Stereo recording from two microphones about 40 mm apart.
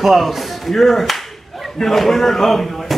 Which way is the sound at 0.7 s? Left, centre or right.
Centre.